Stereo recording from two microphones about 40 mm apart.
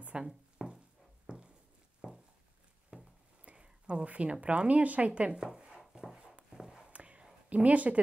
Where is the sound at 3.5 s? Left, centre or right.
Right.